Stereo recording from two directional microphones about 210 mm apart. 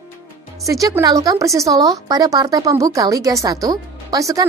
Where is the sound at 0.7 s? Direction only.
15° right (ahead or behind).